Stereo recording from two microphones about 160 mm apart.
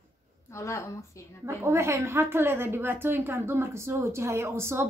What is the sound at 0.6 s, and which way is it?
Speech, 20° left (ahead or behind).